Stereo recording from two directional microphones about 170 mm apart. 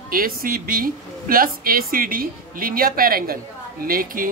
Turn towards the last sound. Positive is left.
turn(degrees=-55)  # may be behind; listen again after turning